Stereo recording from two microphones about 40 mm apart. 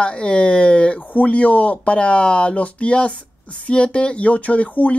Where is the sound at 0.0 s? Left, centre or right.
Left.